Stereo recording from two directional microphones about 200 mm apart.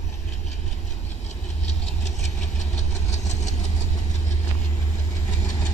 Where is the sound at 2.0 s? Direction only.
35° left (ahead or behind).